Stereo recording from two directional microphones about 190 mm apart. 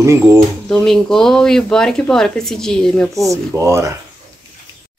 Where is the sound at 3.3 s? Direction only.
15° right (ahead or behind).